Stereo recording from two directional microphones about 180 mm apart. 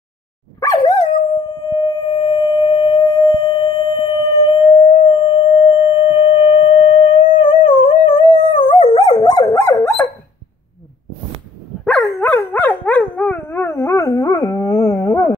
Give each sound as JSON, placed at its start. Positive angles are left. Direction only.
{"t": 0.6, "sound": "dog", "side_deg": 20}
{"t": 1.8, "sound": "singing bowl", "side_deg": 30}
{"t": 7.2, "sound": "dog", "side_deg": 30}
{"t": 11.8, "sound": "dog", "side_deg": 10}